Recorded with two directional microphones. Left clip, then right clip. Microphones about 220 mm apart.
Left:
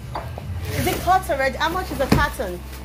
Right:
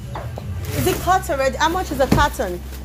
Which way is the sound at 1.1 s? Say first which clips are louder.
Even; 5° right (ahead or behind).